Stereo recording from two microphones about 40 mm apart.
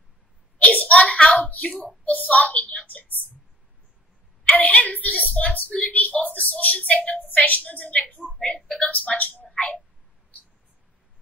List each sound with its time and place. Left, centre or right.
0.6 s hands: left
2.0 s a sound: left
4.6 s a woman's voice: left
8.4 s speech: left
9.1 s speech: left